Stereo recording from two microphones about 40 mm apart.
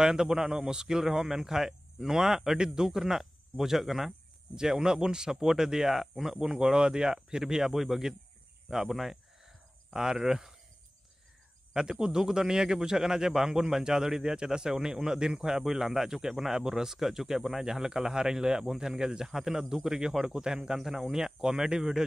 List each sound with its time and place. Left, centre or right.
0.0 s a man's voice: centre
4.6 s a man's voice: centre
6.4 s a man's voice: centre
8.6 s a sound: centre
9.9 s a man's voice: centre
11.7 s a man's voice: centre